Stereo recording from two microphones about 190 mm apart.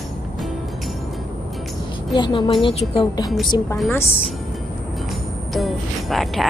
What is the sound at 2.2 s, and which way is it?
Speech, 25° left (ahead or behind).